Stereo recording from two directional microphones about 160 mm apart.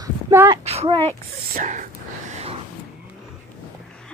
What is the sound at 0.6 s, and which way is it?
Child singing, 40° right (ahead or behind).